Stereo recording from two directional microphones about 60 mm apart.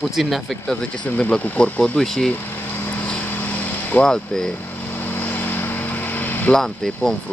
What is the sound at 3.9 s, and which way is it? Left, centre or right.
Speech, left.